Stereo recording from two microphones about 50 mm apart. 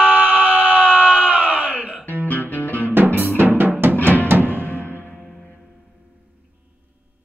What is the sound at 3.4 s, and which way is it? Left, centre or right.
Drum, right.